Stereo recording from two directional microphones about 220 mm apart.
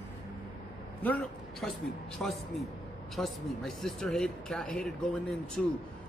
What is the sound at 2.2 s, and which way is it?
Speech, centre (ahead or behind).